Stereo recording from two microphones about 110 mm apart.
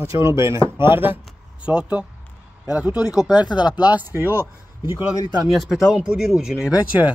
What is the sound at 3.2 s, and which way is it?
Speech, 40° left (ahead or behind).